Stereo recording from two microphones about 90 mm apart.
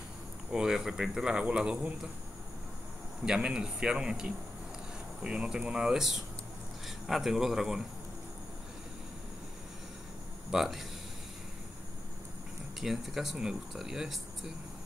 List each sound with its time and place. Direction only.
0.5 s speech: 10° right (ahead or behind)
3.3 s speech: 10° right (ahead or behind)
10.5 s speech: 5° right (ahead or behind)
12.8 s speech: 5° right (ahead or behind)